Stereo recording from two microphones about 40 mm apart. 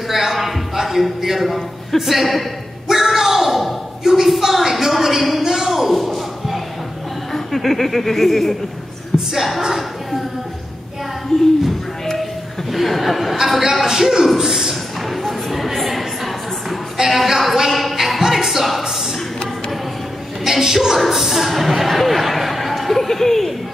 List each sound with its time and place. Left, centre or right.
0.1 s a sound: centre
7.3 s a woman's voice: centre
11.3 s speech: centre
12.7 s a woman's voice: centre
15.2 s a sound: centre
17.1 s speech: centre
20.4 s a woman's voice: centre